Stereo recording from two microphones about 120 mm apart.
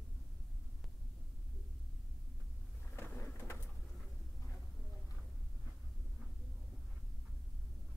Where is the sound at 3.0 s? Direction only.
20° left (ahead or behind).